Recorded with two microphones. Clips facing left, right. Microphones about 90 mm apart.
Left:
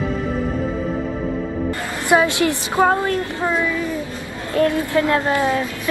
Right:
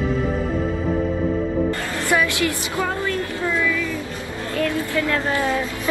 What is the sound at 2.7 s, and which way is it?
Speech, 50° left (ahead or behind).